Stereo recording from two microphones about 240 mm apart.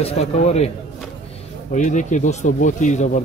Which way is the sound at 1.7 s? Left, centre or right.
Left.